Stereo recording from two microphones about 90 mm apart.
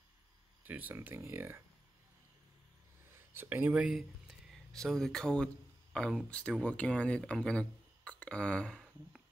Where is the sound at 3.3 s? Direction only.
25° right (ahead or behind).